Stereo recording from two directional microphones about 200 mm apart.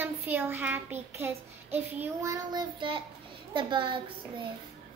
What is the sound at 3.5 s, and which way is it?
Speech, 25° right (ahead or behind).